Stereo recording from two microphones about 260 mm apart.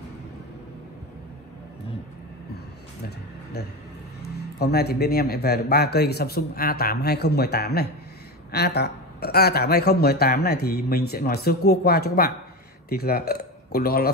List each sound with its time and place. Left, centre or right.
4.6 s speech: left